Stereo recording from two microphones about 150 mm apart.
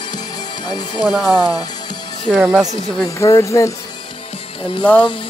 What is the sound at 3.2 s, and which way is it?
Speech, 20° left (ahead or behind).